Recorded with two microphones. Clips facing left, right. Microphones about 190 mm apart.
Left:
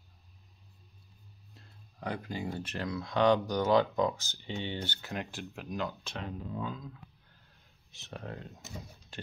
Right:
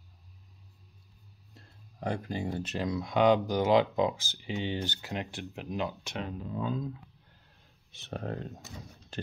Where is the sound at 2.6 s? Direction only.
15° right (ahead or behind).